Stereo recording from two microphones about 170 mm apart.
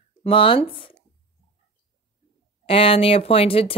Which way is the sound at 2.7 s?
35° left (ahead or behind).